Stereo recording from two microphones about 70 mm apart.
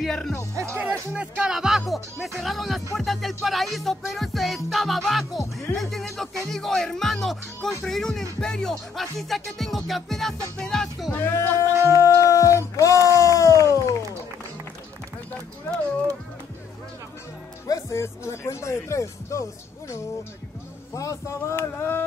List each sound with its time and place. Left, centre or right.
0.0 s speech: centre
1.1 s speech: centre
1.8 s music: centre
5.8 s speech: centre
7.8 s music: centre
11.3 s music: left
11.7 s music: right
12.0 s music: left
13.2 s a sound: left
17.6 s speech: left
20.9 s a sound: left